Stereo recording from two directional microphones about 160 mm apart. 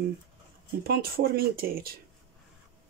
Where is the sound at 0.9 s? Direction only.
70° right (ahead or behind).